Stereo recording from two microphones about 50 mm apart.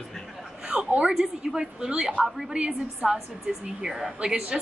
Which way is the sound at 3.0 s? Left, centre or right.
Right.